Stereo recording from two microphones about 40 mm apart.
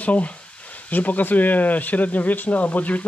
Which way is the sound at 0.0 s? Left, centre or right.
Left.